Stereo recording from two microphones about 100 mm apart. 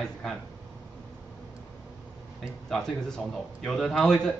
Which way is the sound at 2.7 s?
5° left (ahead or behind).